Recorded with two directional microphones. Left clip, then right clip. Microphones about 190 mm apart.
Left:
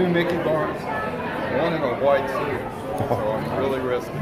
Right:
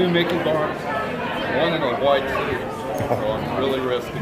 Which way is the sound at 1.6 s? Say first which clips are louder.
Right 2 dB; 5° left (ahead or behind).